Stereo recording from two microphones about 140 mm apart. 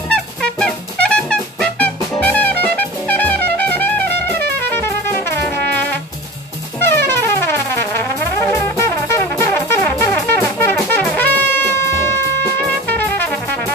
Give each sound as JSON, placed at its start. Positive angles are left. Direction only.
{"t": 0.1, "sound": "music", "side_deg": 5}
{"t": 6.8, "sound": "music", "side_deg": 15}